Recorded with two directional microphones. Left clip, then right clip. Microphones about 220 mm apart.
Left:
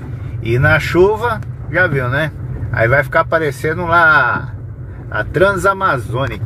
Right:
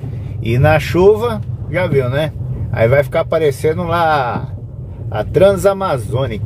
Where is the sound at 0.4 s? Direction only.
25° right (ahead or behind).